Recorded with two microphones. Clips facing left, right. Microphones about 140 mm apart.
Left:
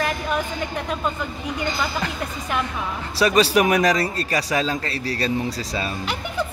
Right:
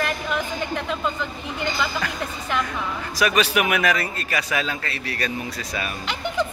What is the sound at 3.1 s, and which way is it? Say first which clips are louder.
A man's voice: left 4 dB; 30° left (ahead or behind).